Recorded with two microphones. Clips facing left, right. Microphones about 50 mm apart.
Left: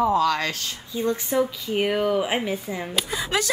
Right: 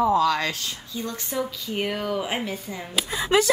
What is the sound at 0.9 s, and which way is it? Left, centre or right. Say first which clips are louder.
Speech: left 7 dB; centre.